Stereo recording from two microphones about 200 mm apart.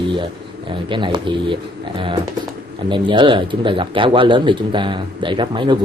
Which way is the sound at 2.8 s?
25° right (ahead or behind).